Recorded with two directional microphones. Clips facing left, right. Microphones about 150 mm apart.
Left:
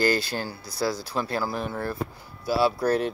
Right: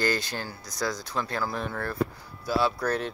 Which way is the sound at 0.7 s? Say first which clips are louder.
Left 4 dB; 30° left (ahead or behind).